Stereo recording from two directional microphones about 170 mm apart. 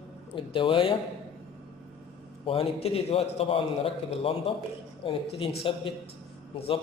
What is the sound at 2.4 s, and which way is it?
A man's voice, 35° left (ahead or behind).